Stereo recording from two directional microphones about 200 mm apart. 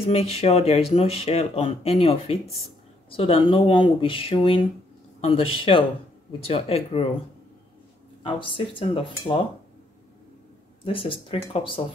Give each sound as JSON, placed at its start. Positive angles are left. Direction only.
{"t": 0.0, "sound": "speech", "side_deg": 30}
{"t": 8.2, "sound": "speech", "side_deg": 25}
{"t": 10.8, "sound": "speech", "side_deg": 25}